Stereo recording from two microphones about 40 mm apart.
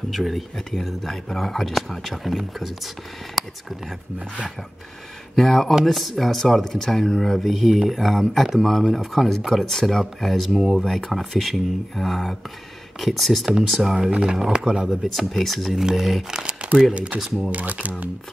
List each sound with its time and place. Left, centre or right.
0.1 s speech: centre
5.3 s speech: centre
14.0 s speech: centre
14.9 s speech: centre
16.3 s speech: centre
17.5 s speech: right